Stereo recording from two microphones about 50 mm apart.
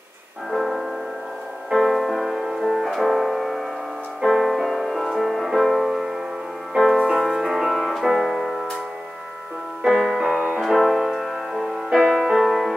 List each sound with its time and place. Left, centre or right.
0.5 s music: centre
9.8 s music: centre
10.1 s music: centre